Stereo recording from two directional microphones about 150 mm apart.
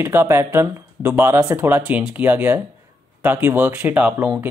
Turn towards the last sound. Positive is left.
turn(degrees=-10)  # may be behind; listen again after turning